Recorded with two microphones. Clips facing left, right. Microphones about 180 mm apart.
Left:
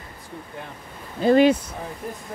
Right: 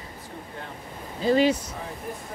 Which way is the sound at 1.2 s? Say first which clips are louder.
Left 5 dB; 55° left (ahead or behind).